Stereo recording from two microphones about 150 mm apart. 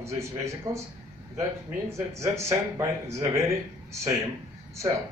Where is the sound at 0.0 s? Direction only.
20° right (ahead or behind).